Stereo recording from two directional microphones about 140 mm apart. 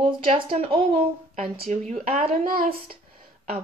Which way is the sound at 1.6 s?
60° right (ahead or behind).